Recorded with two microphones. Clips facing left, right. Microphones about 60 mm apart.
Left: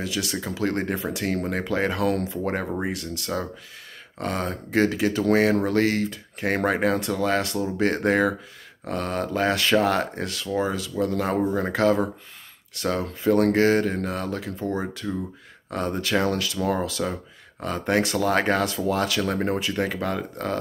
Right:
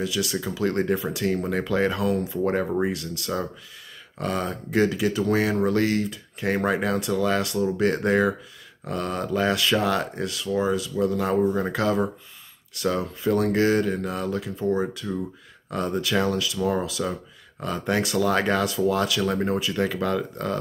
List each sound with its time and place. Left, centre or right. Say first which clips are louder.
0.0 s speech: right 2 dB; left
15.7 s speech: even; left